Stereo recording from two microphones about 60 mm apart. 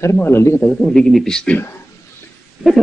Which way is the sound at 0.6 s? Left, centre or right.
Centre.